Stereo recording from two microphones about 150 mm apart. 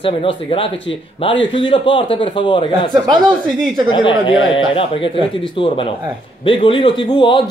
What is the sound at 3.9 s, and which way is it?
A man's voice, 30° left (ahead or behind).